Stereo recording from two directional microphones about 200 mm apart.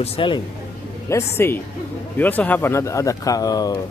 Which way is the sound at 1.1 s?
15° left (ahead or behind).